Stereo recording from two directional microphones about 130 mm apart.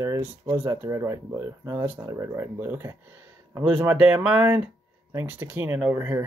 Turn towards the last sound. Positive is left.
turn(degrees=-20)  # may be behind; listen again after turning